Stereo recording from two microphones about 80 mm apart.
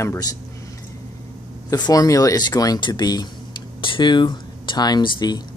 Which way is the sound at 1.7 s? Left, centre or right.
Left.